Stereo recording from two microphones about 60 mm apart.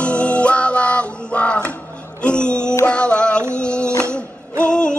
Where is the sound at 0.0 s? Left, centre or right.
Centre.